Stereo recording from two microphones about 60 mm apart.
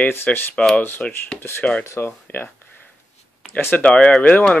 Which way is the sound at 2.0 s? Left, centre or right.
Left.